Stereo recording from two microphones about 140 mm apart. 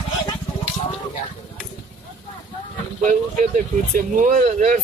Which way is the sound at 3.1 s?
70° right (ahead or behind).